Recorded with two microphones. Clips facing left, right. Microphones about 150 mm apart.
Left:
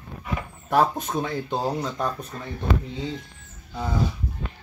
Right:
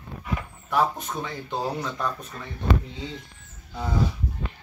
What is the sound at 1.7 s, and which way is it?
Speech, 25° left (ahead or behind).